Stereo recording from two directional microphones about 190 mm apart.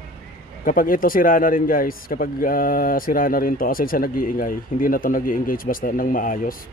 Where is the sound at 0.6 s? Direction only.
45° left (ahead or behind).